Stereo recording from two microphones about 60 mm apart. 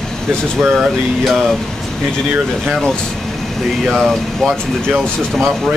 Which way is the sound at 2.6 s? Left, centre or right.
Centre.